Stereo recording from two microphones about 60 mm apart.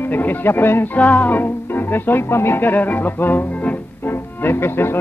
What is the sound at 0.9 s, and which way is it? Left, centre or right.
Music, left.